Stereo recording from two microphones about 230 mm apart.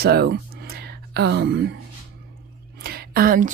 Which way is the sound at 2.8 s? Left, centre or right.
Right.